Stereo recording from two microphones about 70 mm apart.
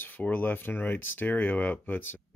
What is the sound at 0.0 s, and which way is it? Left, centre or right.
Speech, left.